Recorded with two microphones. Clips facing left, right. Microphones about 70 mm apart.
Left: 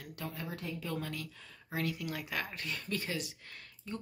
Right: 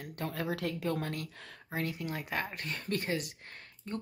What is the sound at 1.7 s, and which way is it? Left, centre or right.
Speech, right.